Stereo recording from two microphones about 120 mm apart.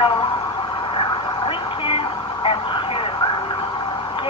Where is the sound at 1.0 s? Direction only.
50° left (ahead or behind).